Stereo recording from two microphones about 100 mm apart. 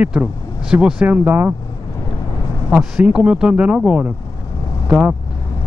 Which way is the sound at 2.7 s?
10° right (ahead or behind).